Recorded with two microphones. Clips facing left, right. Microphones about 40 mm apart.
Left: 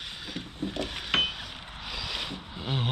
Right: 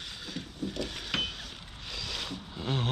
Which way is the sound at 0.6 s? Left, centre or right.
Left.